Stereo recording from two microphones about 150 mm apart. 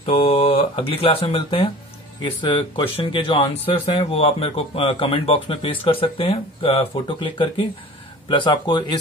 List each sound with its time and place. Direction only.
0.0 s speech: 40° left (ahead or behind)